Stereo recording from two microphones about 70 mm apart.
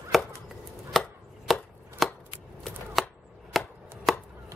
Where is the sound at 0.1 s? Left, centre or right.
Centre.